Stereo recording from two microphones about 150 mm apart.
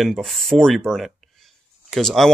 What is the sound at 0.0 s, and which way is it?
Speech, centre (ahead or behind).